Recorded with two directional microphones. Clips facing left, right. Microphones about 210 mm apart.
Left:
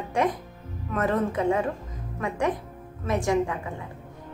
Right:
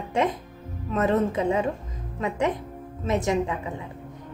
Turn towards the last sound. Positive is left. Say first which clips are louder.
# even
turn(degrees=-20)  # may be behind; listen again after turning